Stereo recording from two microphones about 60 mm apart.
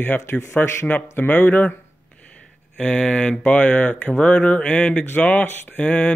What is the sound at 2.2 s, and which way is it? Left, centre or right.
Speech, left.